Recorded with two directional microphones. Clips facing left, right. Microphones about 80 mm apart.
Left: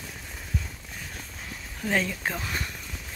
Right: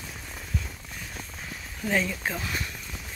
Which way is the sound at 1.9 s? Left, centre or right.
Left.